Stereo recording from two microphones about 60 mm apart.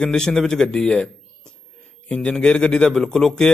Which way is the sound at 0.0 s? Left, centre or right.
Centre.